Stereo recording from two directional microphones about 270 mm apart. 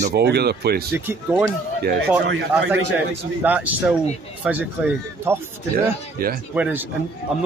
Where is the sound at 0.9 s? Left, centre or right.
Centre.